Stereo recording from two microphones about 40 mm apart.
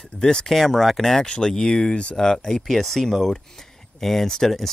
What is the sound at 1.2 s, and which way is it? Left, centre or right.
Speech, centre.